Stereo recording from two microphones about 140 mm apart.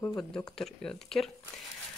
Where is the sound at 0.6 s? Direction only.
5° left (ahead or behind).